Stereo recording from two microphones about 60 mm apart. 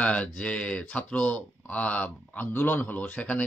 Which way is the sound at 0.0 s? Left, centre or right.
Left.